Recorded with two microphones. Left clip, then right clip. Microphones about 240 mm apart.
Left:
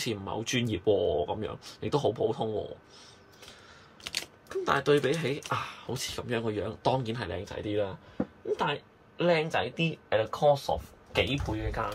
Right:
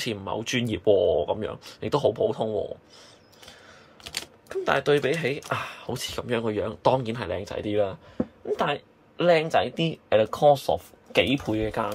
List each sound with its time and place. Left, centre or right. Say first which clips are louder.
0.0 s speech: right 4 dB; centre
4.5 s speech: right 3 dB; centre; by 11.9 s right